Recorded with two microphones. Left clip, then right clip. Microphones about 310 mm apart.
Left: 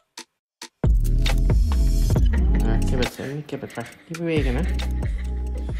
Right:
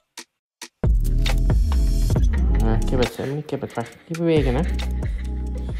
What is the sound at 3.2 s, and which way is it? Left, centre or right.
Speech, right.